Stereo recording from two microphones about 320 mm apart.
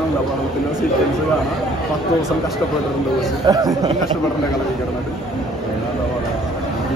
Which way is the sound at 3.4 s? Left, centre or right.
Centre.